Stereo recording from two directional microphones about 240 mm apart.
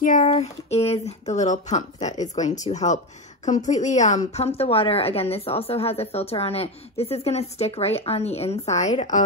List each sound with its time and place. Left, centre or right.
0.0 s a woman's voice: left